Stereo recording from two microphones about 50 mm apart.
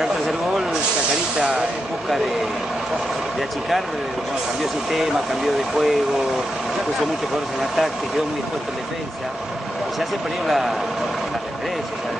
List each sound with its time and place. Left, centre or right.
4.9 s speech: centre
9.9 s speech: centre